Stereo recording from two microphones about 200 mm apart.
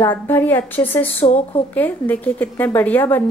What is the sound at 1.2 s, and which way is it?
Speech, 35° left (ahead or behind).